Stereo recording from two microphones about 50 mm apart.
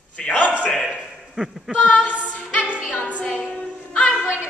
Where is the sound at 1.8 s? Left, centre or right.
Left.